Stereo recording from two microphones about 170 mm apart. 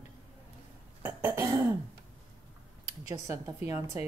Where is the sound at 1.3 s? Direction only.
15° right (ahead or behind).